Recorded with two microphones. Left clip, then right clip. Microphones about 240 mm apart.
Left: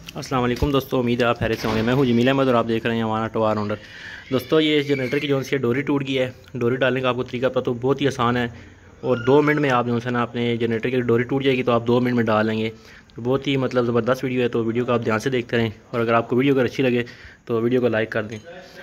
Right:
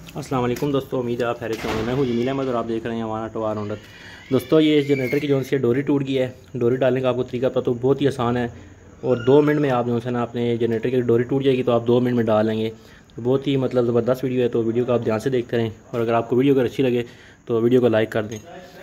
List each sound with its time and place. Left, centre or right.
0.2 s a man's voice: centre
0.7 s speech: centre
4.3 s a man's voice: centre